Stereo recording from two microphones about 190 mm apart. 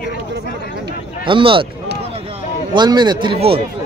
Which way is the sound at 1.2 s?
25° right (ahead or behind).